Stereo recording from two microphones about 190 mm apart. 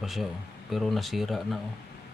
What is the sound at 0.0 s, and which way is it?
Speech, centre (ahead or behind).